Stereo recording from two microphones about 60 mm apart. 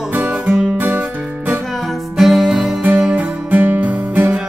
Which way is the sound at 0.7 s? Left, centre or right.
Right.